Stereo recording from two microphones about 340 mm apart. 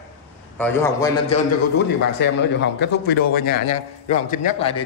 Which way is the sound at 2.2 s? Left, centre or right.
Left.